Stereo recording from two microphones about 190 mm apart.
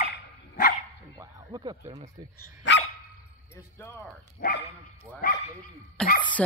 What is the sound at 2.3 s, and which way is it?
Speech, 70° left (ahead or behind).